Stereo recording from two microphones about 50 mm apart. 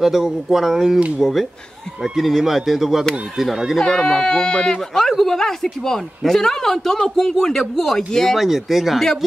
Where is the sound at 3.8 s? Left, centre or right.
Centre.